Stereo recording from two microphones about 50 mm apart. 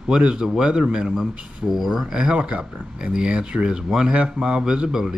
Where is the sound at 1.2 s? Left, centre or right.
Centre.